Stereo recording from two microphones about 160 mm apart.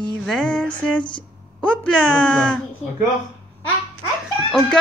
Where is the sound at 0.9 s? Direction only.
30° left (ahead or behind).